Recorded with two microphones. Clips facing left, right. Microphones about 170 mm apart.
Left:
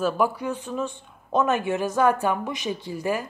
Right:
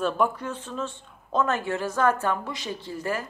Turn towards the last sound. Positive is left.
turn(degrees=15)  # may be behind; listen again after turning